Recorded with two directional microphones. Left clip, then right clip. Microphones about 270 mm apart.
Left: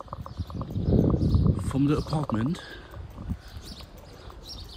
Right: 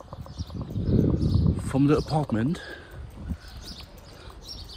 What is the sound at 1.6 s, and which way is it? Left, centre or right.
Speech, centre.